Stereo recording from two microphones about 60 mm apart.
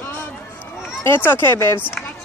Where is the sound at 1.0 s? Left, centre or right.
Left.